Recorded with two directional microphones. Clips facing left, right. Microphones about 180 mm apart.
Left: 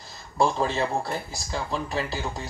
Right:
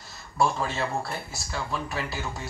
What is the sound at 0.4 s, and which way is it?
Speech, 20° left (ahead or behind).